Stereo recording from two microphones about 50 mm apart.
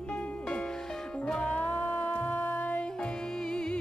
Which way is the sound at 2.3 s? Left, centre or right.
Left.